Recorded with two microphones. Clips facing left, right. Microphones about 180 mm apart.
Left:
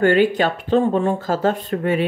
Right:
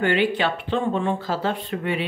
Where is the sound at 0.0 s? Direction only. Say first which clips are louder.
Left 5 dB; 45° left (ahead or behind).